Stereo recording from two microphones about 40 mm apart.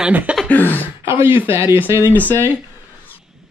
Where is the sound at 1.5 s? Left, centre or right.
Right.